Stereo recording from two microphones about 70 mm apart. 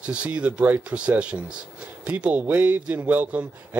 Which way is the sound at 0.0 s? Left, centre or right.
Centre.